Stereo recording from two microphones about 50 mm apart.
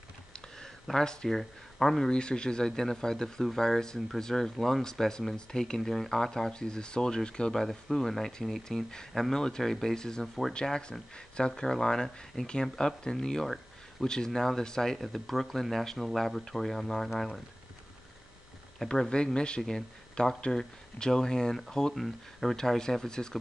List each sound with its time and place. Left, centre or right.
0.9 s speech: centre
7.6 s speech: centre
10.5 s speech: centre
18.9 s speech: centre